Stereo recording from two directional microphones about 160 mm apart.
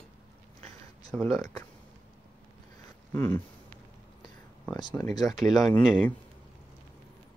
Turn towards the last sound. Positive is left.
turn(degrees=10)  # may be behind; listen again after turning